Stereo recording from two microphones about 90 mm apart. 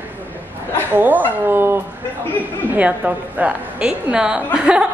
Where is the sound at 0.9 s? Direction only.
20° right (ahead or behind).